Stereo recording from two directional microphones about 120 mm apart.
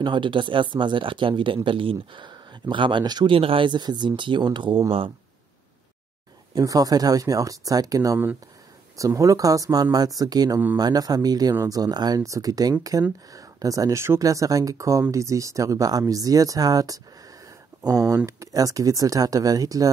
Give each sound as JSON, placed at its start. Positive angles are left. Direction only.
{"t": 0.0, "sound": "speech", "side_deg": -40}
{"t": 3.3, "sound": "speech", "side_deg": -50}
{"t": 6.5, "sound": "speech", "side_deg": -30}